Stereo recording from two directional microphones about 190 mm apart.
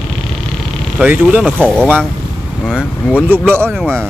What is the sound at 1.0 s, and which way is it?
Speech, 5° right (ahead or behind).